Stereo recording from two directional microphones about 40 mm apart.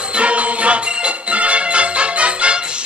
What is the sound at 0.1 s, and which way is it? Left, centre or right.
Music, right.